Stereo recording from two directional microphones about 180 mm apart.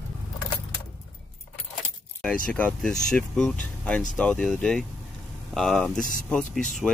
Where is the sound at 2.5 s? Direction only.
5° left (ahead or behind).